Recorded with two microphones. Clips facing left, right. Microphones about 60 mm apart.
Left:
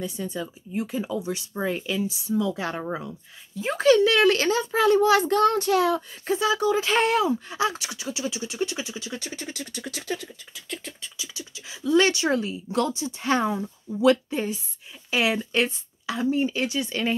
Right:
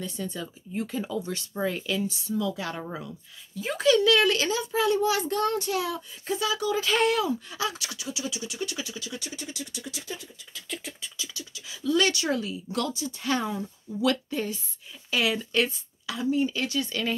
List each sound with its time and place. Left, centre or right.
0.0 s speech: centre
2.3 s a child's voice: left
6.3 s speech: left
9.1 s a child's voice: left
10.7 s beatboxing: centre
11.1 s speech: left
16.6 s speech: centre